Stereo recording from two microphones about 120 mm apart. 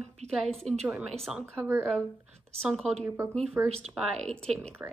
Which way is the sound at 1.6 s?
20° right (ahead or behind).